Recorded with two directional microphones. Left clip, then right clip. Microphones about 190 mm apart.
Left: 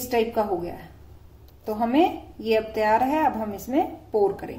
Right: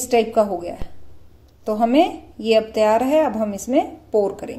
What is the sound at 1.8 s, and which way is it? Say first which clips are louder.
A woman's voice: right 4 dB; 40° right (ahead or behind).